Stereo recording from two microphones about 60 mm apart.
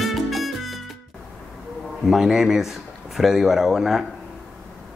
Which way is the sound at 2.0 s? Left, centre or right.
Centre.